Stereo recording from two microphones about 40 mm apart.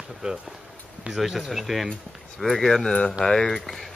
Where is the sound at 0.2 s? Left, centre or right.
Right.